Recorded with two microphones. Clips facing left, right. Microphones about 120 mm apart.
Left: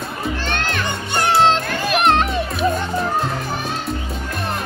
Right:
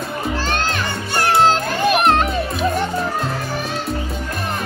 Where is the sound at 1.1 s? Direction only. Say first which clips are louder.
Even; centre (ahead or behind).